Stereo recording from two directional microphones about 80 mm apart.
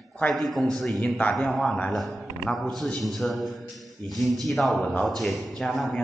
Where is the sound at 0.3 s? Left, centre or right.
Centre.